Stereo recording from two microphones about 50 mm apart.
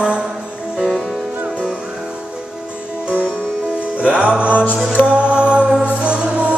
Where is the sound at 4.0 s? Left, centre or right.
Right.